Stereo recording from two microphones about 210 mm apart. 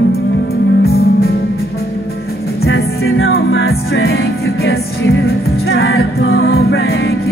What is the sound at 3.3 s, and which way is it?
Music, 55° left (ahead or behind).